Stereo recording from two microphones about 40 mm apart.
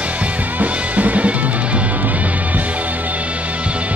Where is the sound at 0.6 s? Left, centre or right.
Right.